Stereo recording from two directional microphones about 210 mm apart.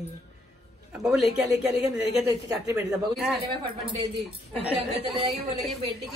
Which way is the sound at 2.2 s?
15° right (ahead or behind).